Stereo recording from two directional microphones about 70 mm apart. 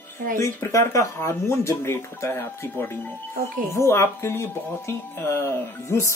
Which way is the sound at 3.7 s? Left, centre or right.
Left.